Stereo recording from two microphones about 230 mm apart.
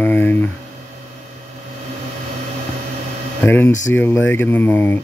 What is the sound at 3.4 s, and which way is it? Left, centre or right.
Speech, centre.